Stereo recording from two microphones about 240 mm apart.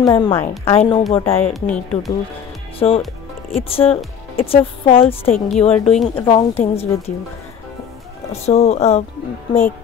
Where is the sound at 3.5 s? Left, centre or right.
Left.